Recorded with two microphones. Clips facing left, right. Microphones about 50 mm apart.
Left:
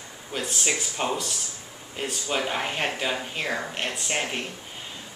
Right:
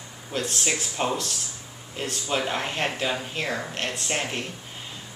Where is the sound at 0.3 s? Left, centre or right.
Centre.